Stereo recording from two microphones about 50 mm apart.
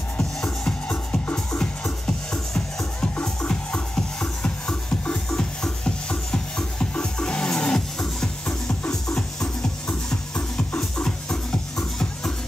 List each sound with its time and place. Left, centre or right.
0.2 s music: centre